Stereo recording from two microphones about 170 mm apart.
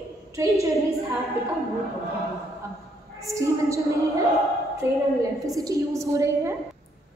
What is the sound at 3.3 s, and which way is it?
Speech, 20° right (ahead or behind).